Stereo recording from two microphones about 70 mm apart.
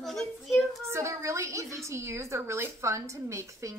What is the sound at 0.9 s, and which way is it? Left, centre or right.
A woman's voice, right.